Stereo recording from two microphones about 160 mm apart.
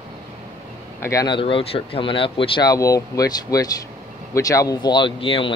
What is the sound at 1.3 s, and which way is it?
Speech, 35° left (ahead or behind).